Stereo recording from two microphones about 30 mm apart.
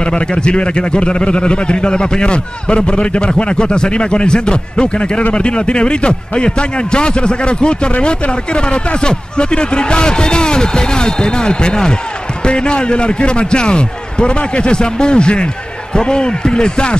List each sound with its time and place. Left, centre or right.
0.0 s a man's voice: left